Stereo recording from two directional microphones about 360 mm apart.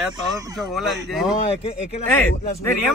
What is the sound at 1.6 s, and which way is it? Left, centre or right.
Speech, centre.